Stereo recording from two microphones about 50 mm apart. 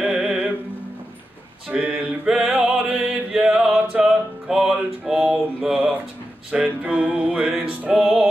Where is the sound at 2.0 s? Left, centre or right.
Centre.